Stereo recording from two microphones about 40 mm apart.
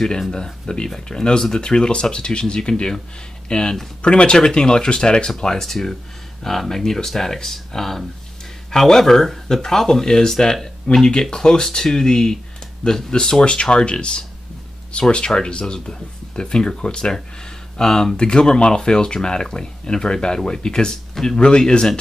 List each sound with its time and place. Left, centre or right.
0.3 s speech: centre
21.4 s speech: left